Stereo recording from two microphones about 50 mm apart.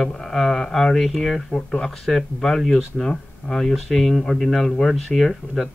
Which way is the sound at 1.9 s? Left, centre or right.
Centre.